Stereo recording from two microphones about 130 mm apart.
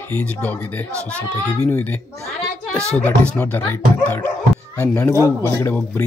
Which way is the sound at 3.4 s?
10° left (ahead or behind).